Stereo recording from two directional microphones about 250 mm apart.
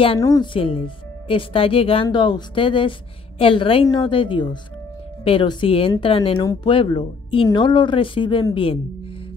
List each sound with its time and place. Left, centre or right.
0.0 s speech: centre